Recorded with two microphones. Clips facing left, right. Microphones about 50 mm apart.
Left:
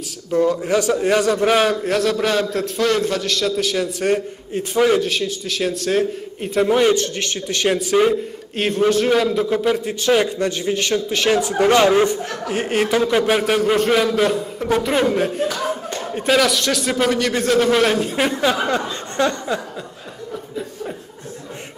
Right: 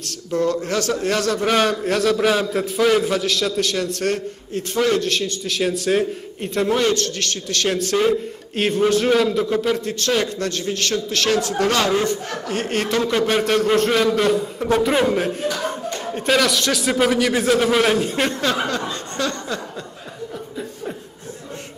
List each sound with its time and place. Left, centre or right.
0.0 s a man's voice: centre
18.7 s speech: left